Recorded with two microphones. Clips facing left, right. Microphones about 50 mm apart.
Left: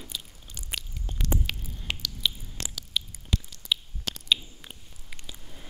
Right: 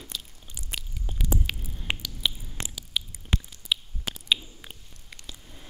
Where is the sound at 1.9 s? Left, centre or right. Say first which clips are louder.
Right 1 dB; centre.